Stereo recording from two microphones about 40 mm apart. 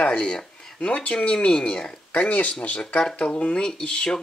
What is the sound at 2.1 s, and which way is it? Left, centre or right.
Speech, left.